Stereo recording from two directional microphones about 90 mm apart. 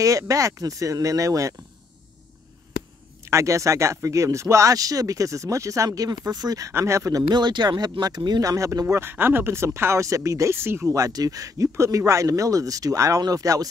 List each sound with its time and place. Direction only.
0.0 s speech: 40° right (ahead or behind)
3.3 s speech: 35° right (ahead or behind)
5.9 s speech: 45° right (ahead or behind)
6.7 s speech: 35° right (ahead or behind)
7.2 s speech: 55° right (ahead or behind)
8.4 s speech: 40° right (ahead or behind)